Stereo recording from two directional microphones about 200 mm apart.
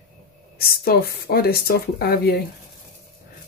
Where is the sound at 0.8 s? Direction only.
50° left (ahead or behind).